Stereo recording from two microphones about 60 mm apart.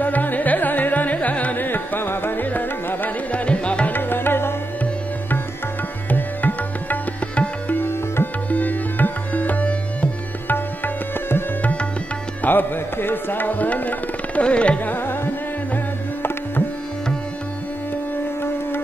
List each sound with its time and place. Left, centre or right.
0.0 s carnatic music: left
3.9 s music: left
6.0 s music: left
7.8 s music: left
8.5 s music: left
11.6 s music: centre
12.4 s tabla: left; by 14.8 s centre
14.9 s music: left
15.7 s tabla: left